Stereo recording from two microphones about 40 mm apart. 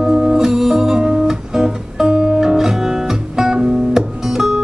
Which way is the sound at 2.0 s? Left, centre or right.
Right.